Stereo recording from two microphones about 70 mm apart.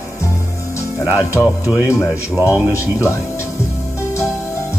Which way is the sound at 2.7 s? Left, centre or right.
Left.